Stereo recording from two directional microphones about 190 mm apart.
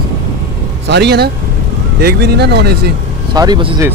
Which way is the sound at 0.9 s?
60° right (ahead or behind).